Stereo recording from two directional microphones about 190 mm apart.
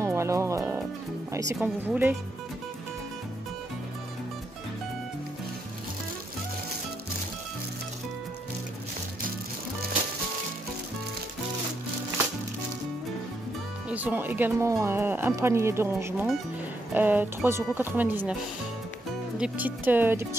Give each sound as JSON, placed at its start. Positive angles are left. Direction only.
{"t": 0.0, "sound": "music", "side_deg": -15}
{"t": 1.3, "sound": "speech", "side_deg": -15}
{"t": 13.8, "sound": "speech", "side_deg": -10}
{"t": 19.3, "sound": "speech", "side_deg": -5}